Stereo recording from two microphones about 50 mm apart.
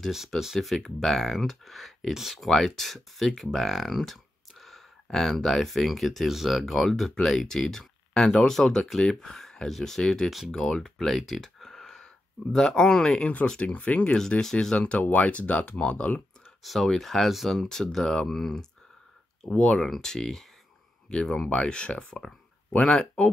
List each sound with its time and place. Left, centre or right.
0.1 s speech: centre; by 14.1 s left
14.4 s speech: centre
14.8 s speech: left
16.6 s speech: centre
17.6 s speech: centre
19.4 s speech: centre